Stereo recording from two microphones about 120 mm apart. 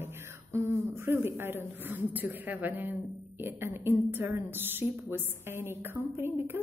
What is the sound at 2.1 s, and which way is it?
A woman's voice, 15° right (ahead or behind).